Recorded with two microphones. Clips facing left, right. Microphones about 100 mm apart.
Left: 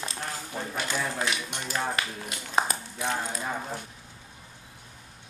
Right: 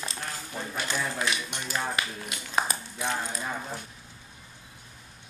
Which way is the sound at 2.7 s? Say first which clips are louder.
Left 1 dB; 10° left (ahead or behind).